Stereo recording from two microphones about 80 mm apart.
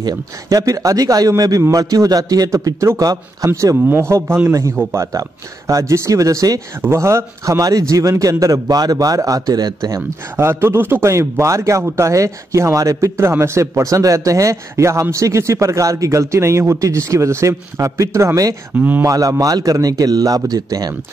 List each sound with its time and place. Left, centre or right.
0.0 s a man's voice: right
3.8 s a man's voice: right
6.9 s a man's voice: right
9.9 s speech: right
18.8 s speech: right
19.0 s a man's voice: right